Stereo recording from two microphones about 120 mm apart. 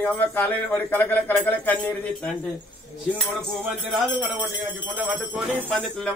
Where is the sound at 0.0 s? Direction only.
15° left (ahead or behind).